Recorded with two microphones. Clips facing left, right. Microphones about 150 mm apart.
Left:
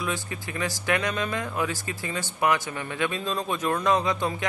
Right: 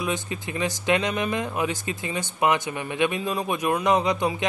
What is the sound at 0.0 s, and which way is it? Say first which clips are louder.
Speech: right 3 dB; 20° right (ahead or behind).